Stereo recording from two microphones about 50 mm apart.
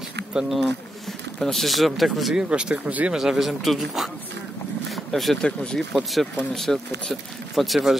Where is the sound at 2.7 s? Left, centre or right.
Right.